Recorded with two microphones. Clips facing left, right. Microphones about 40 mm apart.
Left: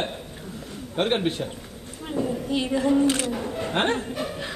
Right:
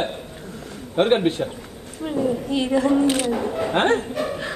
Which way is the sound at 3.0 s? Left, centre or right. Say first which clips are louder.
Right 3 dB; right.